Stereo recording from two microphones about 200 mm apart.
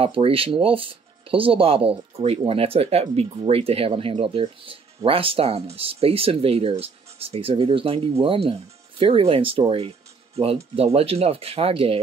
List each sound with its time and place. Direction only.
0.0 s speech: 30° right (ahead or behind)